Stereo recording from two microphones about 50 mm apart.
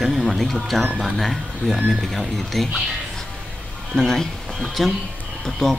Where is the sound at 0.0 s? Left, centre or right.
Centre.